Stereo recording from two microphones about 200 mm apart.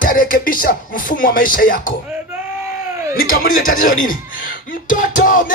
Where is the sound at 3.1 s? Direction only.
45° left (ahead or behind).